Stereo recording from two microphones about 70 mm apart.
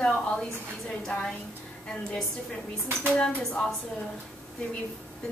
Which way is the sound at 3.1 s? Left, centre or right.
Centre.